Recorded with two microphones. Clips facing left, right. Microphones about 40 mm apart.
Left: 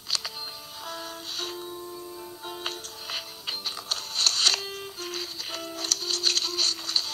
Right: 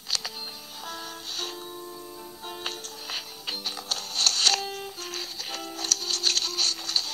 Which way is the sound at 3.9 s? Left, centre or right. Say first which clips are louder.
Even; left.